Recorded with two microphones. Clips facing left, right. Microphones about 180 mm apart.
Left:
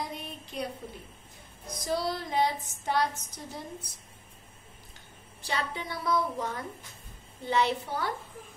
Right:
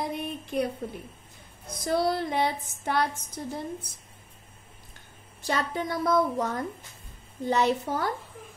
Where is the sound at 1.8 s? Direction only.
55° right (ahead or behind).